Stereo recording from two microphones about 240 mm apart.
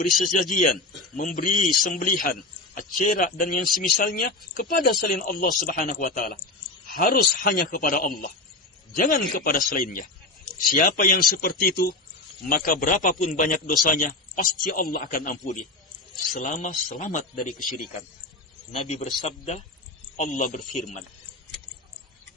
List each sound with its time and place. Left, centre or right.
0.2 s speech: left
18.8 s a man's voice: left